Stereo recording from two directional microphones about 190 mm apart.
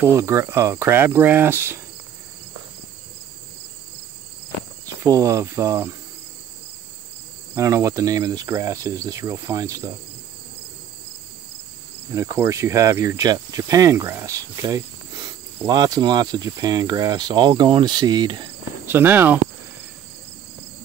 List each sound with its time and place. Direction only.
0.0 s cricket: 15° right (ahead or behind)
5.0 s cricket: 15° right (ahead or behind)
7.5 s cricket: 15° right (ahead or behind)
12.1 s cricket: 15° right (ahead or behind)
18.9 s cricket: 10° right (ahead or behind)